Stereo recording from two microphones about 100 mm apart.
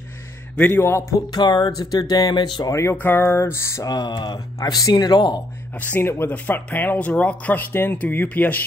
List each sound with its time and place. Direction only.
0.6 s a sound: 20° left (ahead or behind)
1.3 s speech: 45° left (ahead or behind)
2.7 s a sound: 30° left (ahead or behind)
3.8 s speech: 40° left (ahead or behind)
4.6 s speech: 40° left (ahead or behind)
5.8 s speech: 20° left (ahead or behind)